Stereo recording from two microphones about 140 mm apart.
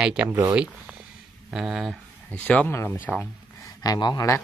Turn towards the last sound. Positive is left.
turn(degrees=25)  # may be behind; listen again after turning